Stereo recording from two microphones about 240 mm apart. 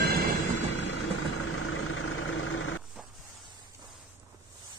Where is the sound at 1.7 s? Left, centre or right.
Left.